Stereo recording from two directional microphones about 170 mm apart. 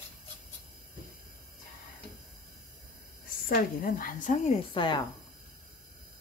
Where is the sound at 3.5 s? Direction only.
55° left (ahead or behind); by 5.1 s 30° left (ahead or behind).